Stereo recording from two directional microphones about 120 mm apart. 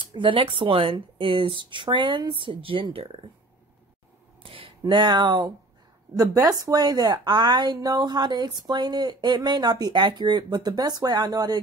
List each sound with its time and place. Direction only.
0.0 s speech: 45° right (ahead or behind)
4.4 s a sound: 50° right (ahead or behind)
6.1 s speech: 30° right (ahead or behind)